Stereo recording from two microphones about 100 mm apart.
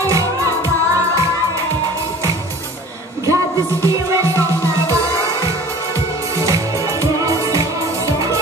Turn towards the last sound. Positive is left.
turn(degrees=-35)  # may be behind; listen again after turning